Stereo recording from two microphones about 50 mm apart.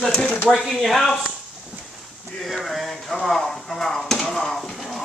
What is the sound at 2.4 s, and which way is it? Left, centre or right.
Speech, centre.